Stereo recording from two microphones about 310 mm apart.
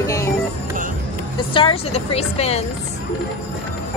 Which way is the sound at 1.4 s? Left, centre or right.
Centre.